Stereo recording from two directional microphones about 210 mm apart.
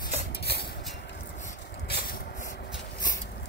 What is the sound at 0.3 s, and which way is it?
Cutlery, 50° left (ahead or behind).